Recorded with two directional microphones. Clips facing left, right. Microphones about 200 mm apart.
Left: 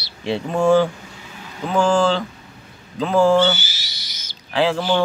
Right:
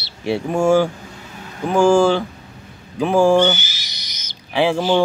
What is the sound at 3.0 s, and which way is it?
Owl, 10° right (ahead or behind).